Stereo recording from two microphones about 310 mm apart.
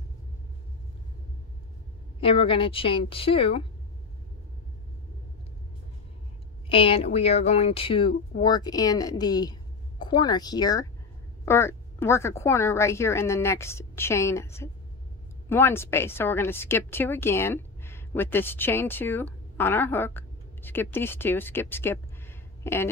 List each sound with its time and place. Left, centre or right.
2.1 s speech: centre
6.7 s a woman's voice: centre